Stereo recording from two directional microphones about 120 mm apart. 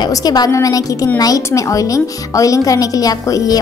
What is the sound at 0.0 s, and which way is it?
A woman's voice, 35° left (ahead or behind).